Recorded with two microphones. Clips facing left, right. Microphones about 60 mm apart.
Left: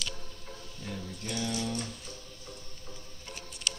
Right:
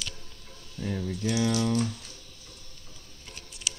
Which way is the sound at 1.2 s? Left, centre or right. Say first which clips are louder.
Right 7 dB; right.